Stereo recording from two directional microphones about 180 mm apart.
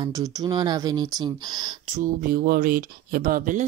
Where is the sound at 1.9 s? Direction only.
50° right (ahead or behind).